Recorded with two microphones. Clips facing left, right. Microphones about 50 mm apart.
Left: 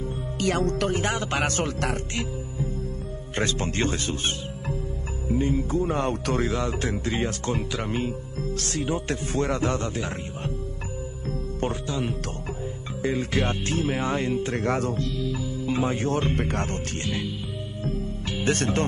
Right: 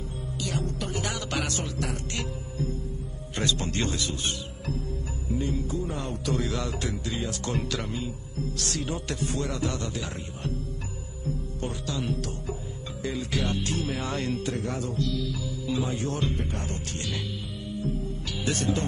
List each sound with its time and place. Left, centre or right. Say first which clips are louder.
0.6 s speech: left 7 dB; left
0.9 s speech: left 5 dB; left
1.5 s speech: left 5 dB; left
3.3 s speech: left 2 dB; left
6.4 s speech: left 4 dB; left
8.5 s speech: left 6 dB; left
11.8 s speech: left 2 dB; left
14.5 s speech: left 6 dB; left
15.0 s speech: left 1 dB; left
16.3 s speech: left 7 dB; left
17.0 s music: left 5 dB; left
18.4 s speech: left 4 dB; left